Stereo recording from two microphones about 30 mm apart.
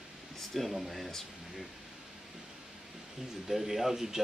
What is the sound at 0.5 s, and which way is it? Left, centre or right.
Speech, centre.